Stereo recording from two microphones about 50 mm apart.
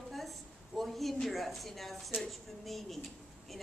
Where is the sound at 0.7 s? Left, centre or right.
Centre.